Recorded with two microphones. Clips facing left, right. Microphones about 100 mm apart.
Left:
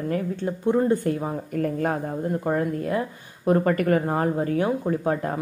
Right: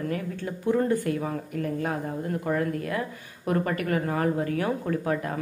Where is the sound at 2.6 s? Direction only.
25° left (ahead or behind).